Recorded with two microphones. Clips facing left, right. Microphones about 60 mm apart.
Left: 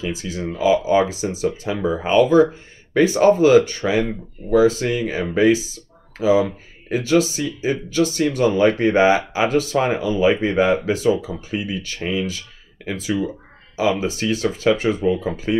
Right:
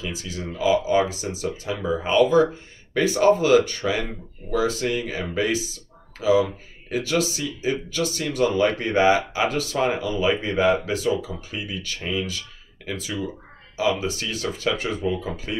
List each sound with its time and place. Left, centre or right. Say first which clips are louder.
0.0 s speech: left 6 dB; left